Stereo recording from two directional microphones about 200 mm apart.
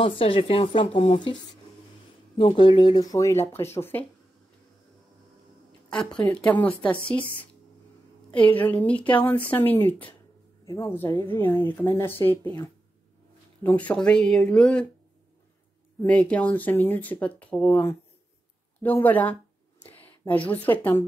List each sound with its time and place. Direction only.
0.0 s speech: 25° left (ahead or behind)
2.3 s speech: 25° left (ahead or behind)
5.9 s speech: 5° left (ahead or behind)
8.3 s a woman's voice: 10° left (ahead or behind)
13.6 s speech: 5° left (ahead or behind)
16.0 s speech: 5° left (ahead or behind)